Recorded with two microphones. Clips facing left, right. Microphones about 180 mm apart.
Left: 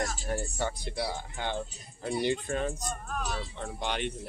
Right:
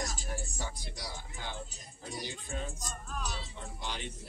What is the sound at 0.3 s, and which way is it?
Speech, 65° left (ahead or behind).